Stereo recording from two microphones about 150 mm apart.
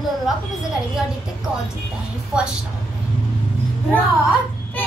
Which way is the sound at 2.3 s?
5° right (ahead or behind).